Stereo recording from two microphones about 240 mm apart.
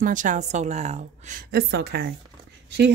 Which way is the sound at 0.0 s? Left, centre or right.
Right.